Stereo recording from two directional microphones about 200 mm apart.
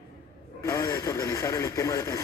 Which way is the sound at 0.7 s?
15° left (ahead or behind).